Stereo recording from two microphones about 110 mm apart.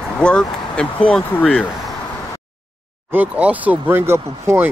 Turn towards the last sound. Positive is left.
turn(degrees=-20)  # may be behind; listen again after turning